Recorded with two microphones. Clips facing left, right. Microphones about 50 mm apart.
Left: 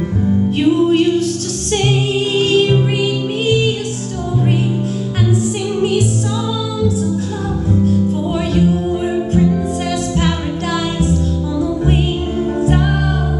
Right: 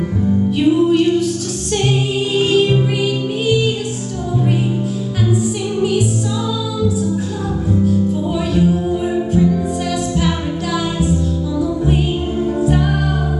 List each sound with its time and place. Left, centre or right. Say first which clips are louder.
0.6 s music: even; left
2.3 s music: even; centre
3.0 s music: left 1 dB; left
12.6 s music: left 1 dB; left